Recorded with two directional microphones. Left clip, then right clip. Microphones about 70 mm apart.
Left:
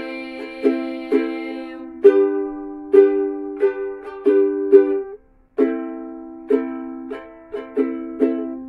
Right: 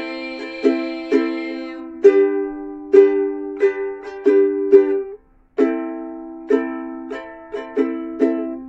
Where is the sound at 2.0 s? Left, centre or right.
Right.